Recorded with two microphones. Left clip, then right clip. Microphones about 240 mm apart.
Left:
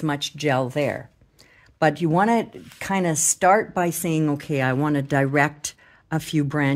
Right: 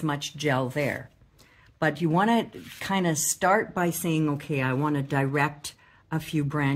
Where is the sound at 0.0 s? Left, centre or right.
Left.